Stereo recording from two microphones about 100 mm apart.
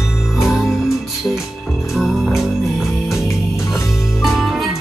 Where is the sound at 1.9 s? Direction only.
Centre (ahead or behind).